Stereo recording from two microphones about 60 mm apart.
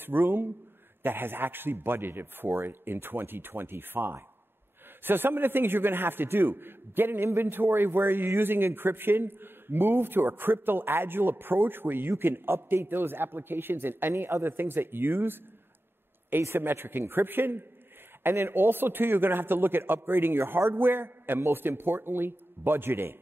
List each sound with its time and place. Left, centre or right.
0.0 s a man's voice: right